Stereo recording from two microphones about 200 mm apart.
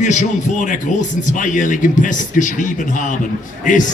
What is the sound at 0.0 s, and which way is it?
Speech, 35° left (ahead or behind).